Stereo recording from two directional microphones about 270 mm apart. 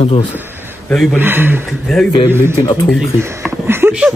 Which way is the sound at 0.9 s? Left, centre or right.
Centre.